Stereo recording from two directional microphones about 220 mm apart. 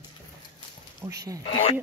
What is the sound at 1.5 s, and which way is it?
Speech, 25° left (ahead or behind).